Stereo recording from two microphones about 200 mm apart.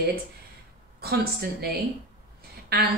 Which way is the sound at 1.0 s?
50° right (ahead or behind).